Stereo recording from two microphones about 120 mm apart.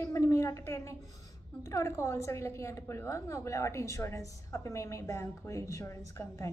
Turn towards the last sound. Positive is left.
turn(degrees=25)  # may be behind; listen again after turning